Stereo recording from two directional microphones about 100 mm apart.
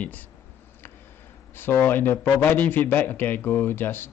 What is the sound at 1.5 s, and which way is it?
A man's voice, 20° left (ahead or behind).